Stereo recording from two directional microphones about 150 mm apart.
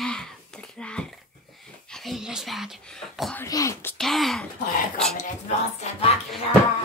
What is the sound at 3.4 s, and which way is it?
Speech, 20° left (ahead or behind).